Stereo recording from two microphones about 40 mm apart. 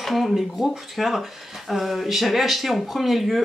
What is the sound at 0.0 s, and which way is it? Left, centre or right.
Speech, centre.